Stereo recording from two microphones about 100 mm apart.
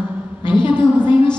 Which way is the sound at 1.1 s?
60° left (ahead or behind).